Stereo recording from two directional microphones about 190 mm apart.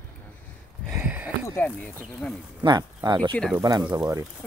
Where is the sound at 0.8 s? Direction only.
5° right (ahead or behind).